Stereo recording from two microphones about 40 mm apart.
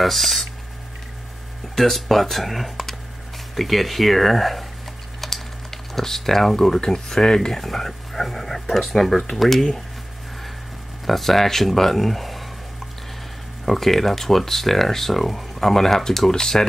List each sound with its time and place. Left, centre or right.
0.0 s speech: centre
1.8 s speech: centre
5.2 s typing: centre
6.8 s speech: centre
11.1 s speech: centre
13.7 s speech: centre